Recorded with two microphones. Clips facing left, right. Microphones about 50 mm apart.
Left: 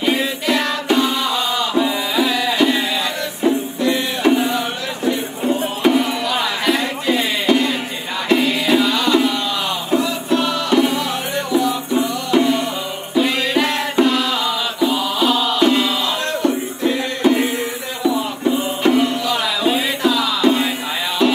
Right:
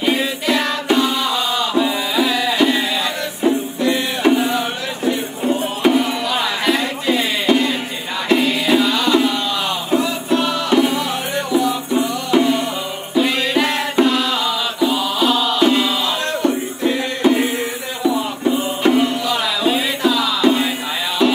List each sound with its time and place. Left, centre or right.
0.0 s music: centre
1.0 s music: centre
2.1 s music: centre
3.8 s music: centre
8.7 s music: centre
9.9 s music: centre
14.0 s music: centre
16.3 s music: centre
18.8 s music: centre
19.4 s music: centre